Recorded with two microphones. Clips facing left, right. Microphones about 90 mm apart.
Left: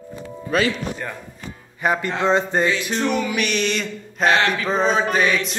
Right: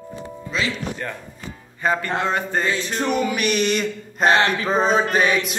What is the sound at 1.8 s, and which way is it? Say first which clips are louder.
Speech: left 1 dB; 15° left (ahead or behind).